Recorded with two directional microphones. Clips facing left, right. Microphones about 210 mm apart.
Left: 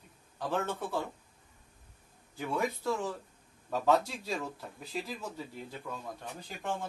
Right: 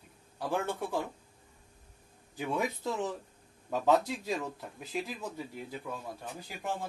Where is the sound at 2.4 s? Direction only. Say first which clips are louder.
Even; 15° right (ahead or behind).